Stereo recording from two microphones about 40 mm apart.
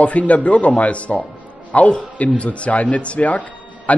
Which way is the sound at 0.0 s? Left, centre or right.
Left.